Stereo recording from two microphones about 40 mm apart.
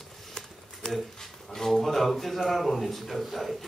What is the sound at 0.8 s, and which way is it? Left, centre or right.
A man's voice, centre.